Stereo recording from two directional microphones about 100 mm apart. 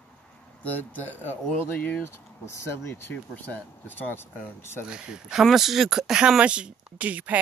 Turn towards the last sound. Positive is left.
turn(degrees=-15)  # may be behind; listen again after turning